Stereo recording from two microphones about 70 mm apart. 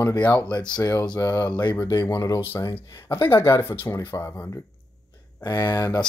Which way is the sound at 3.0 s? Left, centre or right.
Left.